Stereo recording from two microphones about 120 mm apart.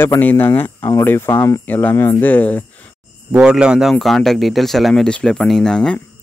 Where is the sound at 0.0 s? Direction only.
15° left (ahead or behind).